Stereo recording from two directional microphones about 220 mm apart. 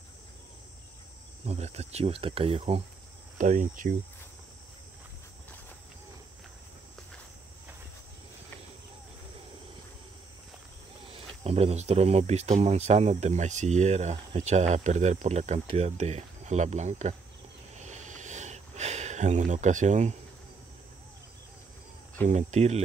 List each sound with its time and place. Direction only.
1.4 s speech: 30° right (ahead or behind)
11.1 s speech: 25° right (ahead or behind)
17.7 s a sound: 30° right (ahead or behind)
22.3 s speech: 30° right (ahead or behind)